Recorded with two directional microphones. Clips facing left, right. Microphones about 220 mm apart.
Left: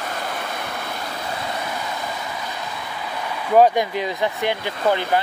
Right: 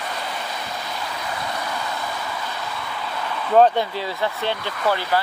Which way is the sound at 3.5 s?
10° left (ahead or behind).